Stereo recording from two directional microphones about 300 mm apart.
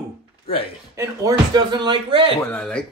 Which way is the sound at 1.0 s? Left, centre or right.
Centre.